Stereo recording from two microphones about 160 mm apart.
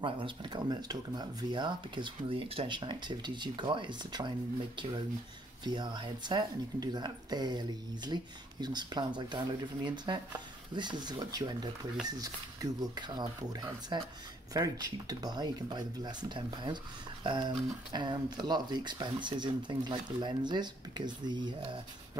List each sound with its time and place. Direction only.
0.0 s speech: 30° right (ahead or behind)
5.6 s speech: 25° right (ahead or behind)